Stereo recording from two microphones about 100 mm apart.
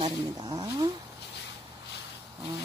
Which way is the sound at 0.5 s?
45° right (ahead or behind).